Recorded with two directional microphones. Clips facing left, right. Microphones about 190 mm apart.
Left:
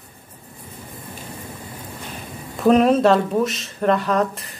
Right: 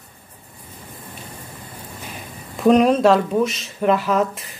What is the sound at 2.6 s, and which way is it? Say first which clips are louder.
Speech: right 1 dB; centre (ahead or behind).